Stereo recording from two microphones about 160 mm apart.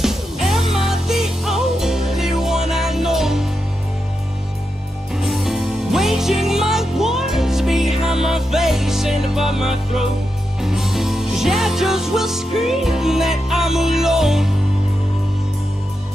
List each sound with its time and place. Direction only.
0.0 s music: centre (ahead or behind)
5.1 s music: centre (ahead or behind)